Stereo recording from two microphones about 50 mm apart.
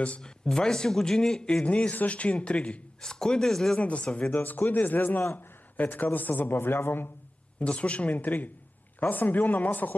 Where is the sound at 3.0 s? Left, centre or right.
Centre.